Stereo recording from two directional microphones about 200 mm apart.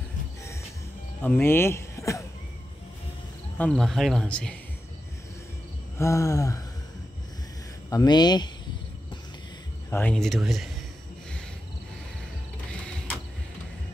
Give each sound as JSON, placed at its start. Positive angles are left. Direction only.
{"t": 1.2, "sound": "speech", "side_deg": 10}
{"t": 3.5, "sound": "speech", "side_deg": 5}
{"t": 5.9, "sound": "a sound", "side_deg": 15}
{"t": 7.9, "sound": "speech", "side_deg": 20}
{"t": 9.8, "sound": "speech", "side_deg": 10}